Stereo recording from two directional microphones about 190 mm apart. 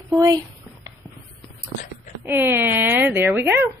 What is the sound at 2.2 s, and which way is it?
A woman's voice, 10° right (ahead or behind).